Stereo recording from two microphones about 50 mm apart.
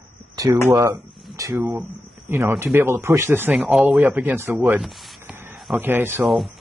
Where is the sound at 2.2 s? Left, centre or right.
Right.